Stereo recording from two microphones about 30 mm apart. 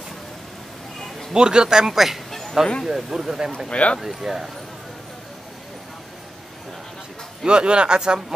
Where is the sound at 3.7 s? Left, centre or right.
Left.